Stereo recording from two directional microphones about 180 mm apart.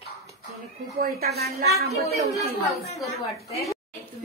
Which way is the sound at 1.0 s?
60° right (ahead or behind).